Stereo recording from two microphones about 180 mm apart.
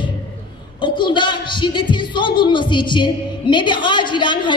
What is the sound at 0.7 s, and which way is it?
Speech, 25° left (ahead or behind).